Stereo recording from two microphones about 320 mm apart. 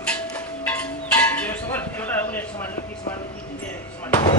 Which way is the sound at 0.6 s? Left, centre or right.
Centre.